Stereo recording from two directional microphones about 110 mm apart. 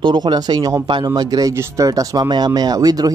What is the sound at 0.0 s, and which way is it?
Speech, 45° right (ahead or behind).